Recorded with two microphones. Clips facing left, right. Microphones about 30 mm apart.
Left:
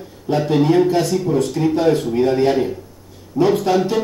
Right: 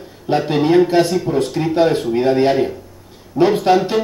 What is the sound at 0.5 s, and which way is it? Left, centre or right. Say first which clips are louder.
A man's voice: right 1 dB; right.